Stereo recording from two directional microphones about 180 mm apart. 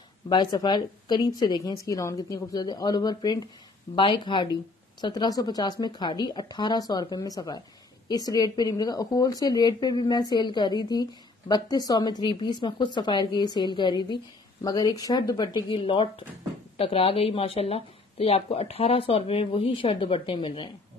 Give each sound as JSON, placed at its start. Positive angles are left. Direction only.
{"t": 0.3, "sound": "a woman's voice", "side_deg": 25}